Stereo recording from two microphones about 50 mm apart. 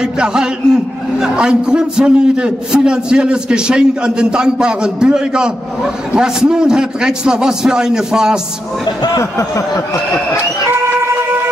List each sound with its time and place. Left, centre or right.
0.0 s a man's voice: centre
10.7 s siren: right